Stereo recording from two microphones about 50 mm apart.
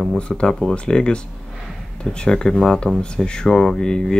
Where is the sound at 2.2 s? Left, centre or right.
Centre.